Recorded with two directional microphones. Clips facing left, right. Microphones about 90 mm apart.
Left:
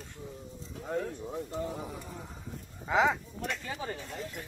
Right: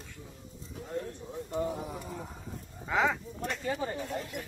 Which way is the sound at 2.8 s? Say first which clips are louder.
Left 2 dB; 15° left (ahead or behind).